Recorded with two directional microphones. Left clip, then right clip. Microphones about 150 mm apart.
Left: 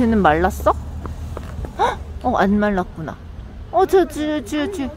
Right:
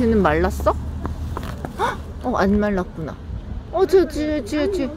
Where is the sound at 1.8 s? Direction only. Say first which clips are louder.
Left 4 dB; 15° left (ahead or behind).